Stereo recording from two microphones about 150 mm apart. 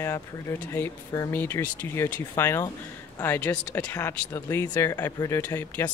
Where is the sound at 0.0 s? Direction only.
15° left (ahead or behind).